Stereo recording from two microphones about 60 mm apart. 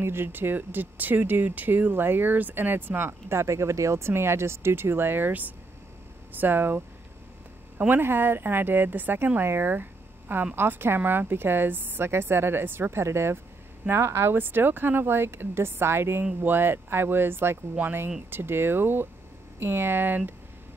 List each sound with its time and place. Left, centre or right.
0.0 s speech: right
7.7 s a sound: right
8.0 s speech: right
17.8 s speech: right
18.3 s speech: right